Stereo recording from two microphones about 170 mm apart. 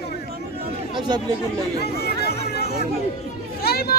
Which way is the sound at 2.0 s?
70° left (ahead or behind).